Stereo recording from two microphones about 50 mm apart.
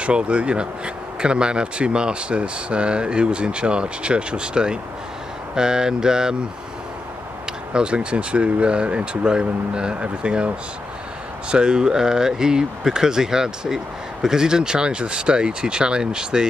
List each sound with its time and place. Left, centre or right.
0.0 s speech: right
7.7 s speech: right
11.5 s speech: centre